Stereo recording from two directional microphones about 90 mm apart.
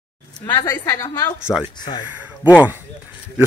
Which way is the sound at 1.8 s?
50° left (ahead or behind).